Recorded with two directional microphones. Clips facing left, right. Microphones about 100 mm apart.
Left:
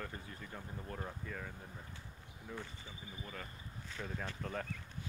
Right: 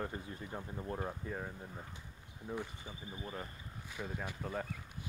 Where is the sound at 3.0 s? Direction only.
25° right (ahead or behind).